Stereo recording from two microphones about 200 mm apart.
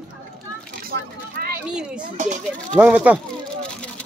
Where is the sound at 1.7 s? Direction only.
5° right (ahead or behind).